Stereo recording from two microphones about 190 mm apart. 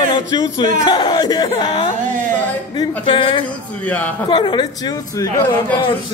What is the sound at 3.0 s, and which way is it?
Speech, 25° left (ahead or behind).